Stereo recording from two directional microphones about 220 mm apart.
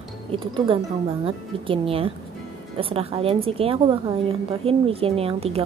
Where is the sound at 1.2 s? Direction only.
25° right (ahead or behind).